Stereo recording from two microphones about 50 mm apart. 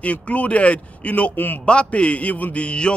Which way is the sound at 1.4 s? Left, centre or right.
Left.